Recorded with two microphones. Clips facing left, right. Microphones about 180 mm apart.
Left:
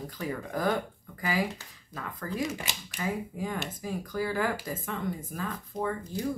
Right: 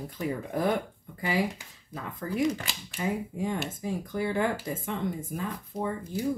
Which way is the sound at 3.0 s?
25° right (ahead or behind).